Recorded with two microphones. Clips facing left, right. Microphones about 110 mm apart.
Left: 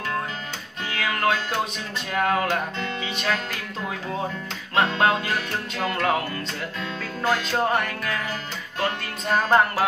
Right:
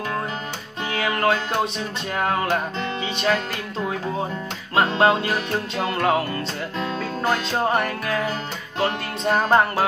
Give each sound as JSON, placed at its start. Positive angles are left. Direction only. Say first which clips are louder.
{"t": 0.9, "sound": "music", "louder": "right 3 dB", "side_deg": -25}
{"t": 2.8, "sound": "music", "louder": "right 4 dB", "side_deg": -30}
{"t": 5.0, "sound": "music", "louder": "right 3 dB", "side_deg": -25}